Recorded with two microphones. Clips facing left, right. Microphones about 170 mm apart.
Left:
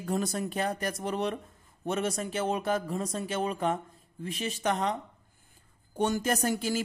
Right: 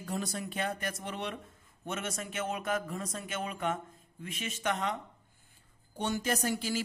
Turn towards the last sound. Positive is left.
turn(degrees=45)  # may be behind; listen again after turning